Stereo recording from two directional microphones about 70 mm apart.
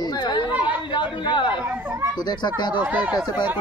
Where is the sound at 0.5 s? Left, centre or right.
Right.